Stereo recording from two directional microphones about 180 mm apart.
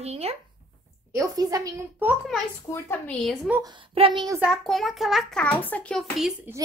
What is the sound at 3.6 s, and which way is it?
Speech, 25° right (ahead or behind).